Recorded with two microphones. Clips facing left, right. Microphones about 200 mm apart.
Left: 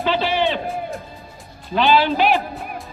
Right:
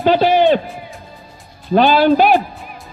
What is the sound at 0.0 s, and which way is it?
Speech, 45° right (ahead or behind).